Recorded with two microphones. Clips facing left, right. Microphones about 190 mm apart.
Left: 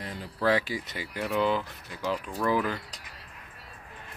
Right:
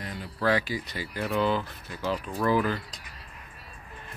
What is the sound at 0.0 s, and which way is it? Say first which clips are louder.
Speech: even; 25° left (ahead or behind).